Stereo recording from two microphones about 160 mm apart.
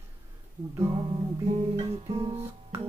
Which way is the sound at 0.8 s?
35° right (ahead or behind).